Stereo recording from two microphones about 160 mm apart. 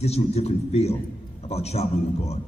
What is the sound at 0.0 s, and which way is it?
A man's voice, 40° left (ahead or behind).